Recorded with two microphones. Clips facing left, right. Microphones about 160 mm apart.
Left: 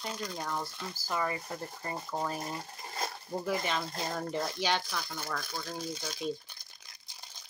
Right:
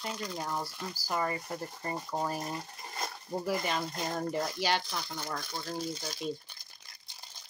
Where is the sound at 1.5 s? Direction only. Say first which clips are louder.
Right 2 dB; 25° right (ahead or behind).